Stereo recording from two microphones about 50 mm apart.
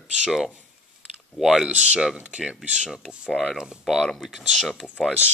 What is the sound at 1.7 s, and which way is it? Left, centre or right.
Speech, right.